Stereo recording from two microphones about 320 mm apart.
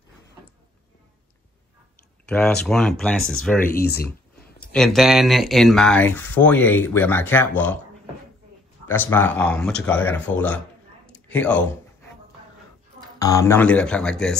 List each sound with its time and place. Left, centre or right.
2.2 s speech: centre
3.6 s speech: left
4.7 s speech: centre
8.8 s speech: centre
13.2 s speech: centre